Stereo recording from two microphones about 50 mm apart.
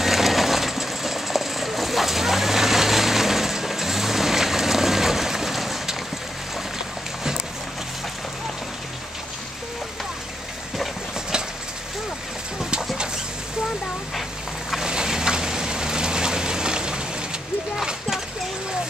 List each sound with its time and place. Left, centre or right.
0.0 s sewing machine: centre
14.9 s vehicle: centre